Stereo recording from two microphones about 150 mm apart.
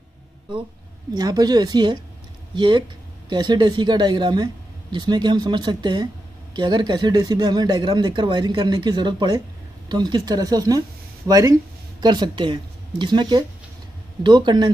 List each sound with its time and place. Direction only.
1.1 s speech: 25° right (ahead or behind)